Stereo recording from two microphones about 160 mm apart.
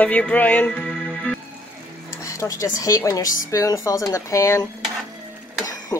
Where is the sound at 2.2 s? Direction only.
20° left (ahead or behind).